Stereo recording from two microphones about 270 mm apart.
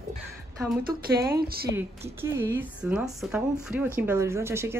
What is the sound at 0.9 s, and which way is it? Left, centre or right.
Speech, centre.